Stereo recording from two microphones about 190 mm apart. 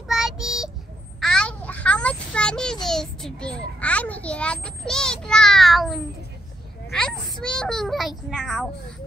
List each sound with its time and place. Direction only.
0.1 s child singing: 5° right (ahead or behind)
1.2 s a sound: 5° left (ahead or behind)
6.9 s a child's voice: 5° left (ahead or behind)